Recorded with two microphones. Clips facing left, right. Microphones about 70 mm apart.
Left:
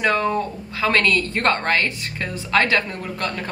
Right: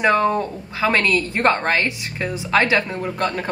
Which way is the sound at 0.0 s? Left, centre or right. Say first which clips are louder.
Right 3 dB; centre.